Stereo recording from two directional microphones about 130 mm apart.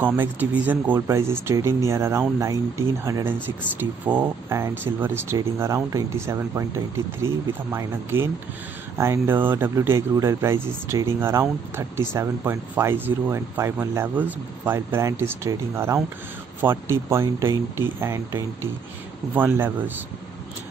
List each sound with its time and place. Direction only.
0.0 s speech: 15° right (ahead or behind)
7.7 s speech: 20° right (ahead or behind)